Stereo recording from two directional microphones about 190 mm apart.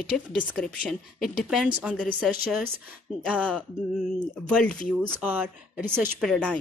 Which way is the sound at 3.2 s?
5° left (ahead or behind).